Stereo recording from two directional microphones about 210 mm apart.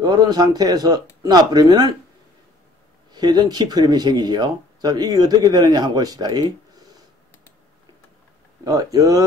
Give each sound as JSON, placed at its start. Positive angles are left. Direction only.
{"t": 0.0, "sound": "speech", "side_deg": -20}
{"t": 3.1, "sound": "speech", "side_deg": -20}
{"t": 8.6, "sound": "speech", "side_deg": -15}